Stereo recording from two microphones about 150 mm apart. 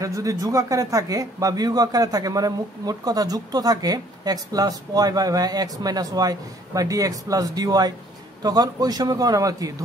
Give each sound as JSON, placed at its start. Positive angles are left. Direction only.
{"t": 0.0, "sound": "speech", "side_deg": -20}